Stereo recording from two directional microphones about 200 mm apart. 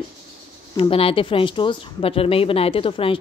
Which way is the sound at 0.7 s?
30° left (ahead or behind).